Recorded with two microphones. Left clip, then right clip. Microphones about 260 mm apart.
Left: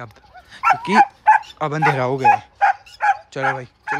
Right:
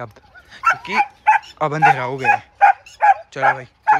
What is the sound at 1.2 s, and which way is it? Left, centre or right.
Speech, centre.